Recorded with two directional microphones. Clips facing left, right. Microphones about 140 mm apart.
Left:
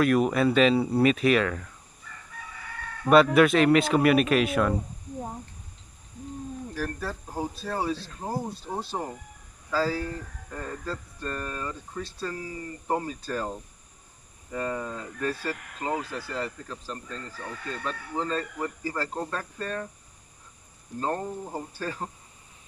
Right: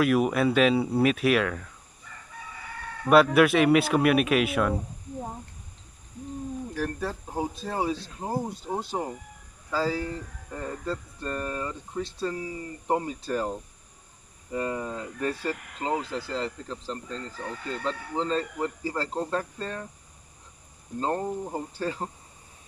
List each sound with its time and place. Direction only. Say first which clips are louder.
0.0 s speech: left 1 dB; 5° right (ahead or behind)
3.1 s speech: even; 5° right (ahead or behind)
6.7 s speech: right 1 dB; 15° right (ahead or behind)
21.0 s speech: right 2 dB; 20° right (ahead or behind)